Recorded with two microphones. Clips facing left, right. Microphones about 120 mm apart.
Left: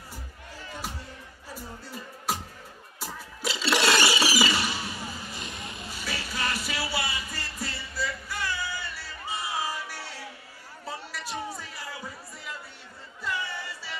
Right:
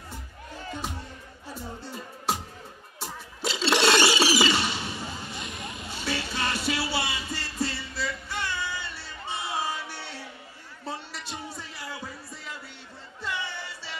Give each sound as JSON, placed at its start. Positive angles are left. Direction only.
{"t": 1.5, "sound": "music", "side_deg": -25}
{"t": 3.0, "sound": "a sound", "side_deg": -25}
{"t": 5.9, "sound": "music", "side_deg": -25}
{"t": 9.5, "sound": "crowd", "side_deg": -25}
{"t": 11.2, "sound": "music", "side_deg": 0}
{"t": 11.7, "sound": "music", "side_deg": -25}
{"t": 13.2, "sound": "music", "side_deg": -30}